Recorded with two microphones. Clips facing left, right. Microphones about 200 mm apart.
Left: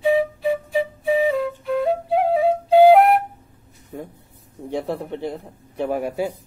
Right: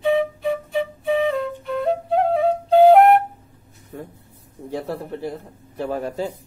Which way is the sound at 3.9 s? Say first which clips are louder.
Left 2 dB; 15° left (ahead or behind).